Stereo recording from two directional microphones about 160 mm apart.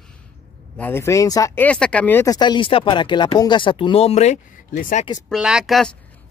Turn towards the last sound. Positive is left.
turn(degrees=0)  # may be behind; listen again after turning